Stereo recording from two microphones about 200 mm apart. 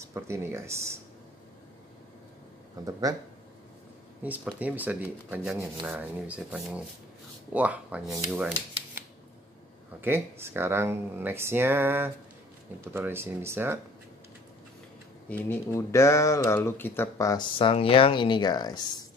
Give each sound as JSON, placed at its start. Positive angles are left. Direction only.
{"t": 0.0, "sound": "speech", "side_deg": -15}
{"t": 2.8, "sound": "speech", "side_deg": -15}
{"t": 4.2, "sound": "speech", "side_deg": -10}
{"t": 9.9, "sound": "speech", "side_deg": -10}
{"t": 15.2, "sound": "speech", "side_deg": 10}